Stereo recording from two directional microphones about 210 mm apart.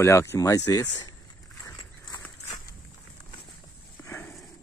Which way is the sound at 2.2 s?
15° left (ahead or behind).